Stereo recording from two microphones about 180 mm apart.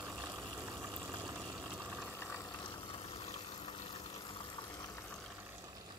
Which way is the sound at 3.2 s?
25° left (ahead or behind).